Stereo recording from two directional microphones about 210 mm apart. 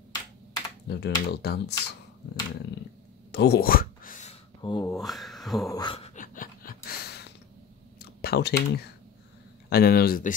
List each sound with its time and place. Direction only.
0.8 s speech: 50° left (ahead or behind)
3.3 s a sound: 50° left (ahead or behind); by 4.4 s 35° left (ahead or behind)
4.6 s speech: 20° left (ahead or behind)
4.9 s speech: centre (ahead or behind)
5.7 s a sound: 20° left (ahead or behind); by 7.3 s 50° left (ahead or behind)
8.2 s speech: 50° left (ahead or behind)